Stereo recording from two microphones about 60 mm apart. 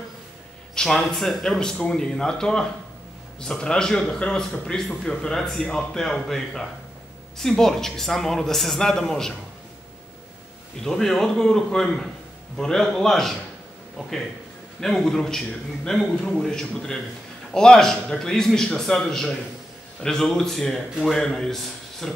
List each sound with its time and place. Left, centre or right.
0.7 s a man's voice: centre
10.8 s a man's voice: centre
14.8 s a man's voice: centre